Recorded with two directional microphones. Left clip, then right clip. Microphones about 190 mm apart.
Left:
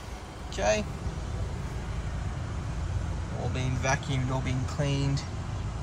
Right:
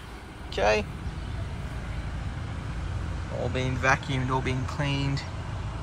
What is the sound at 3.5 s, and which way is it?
Speech, 10° left (ahead or behind).